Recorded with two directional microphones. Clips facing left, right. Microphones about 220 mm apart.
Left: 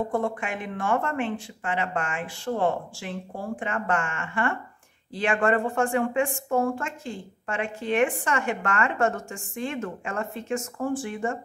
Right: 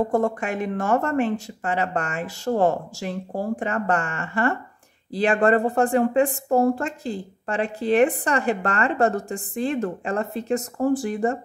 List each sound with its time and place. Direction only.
0.1 s a woman's voice: 40° right (ahead or behind)